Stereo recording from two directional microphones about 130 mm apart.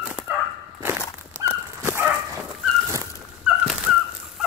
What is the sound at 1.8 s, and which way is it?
Dog, 15° right (ahead or behind).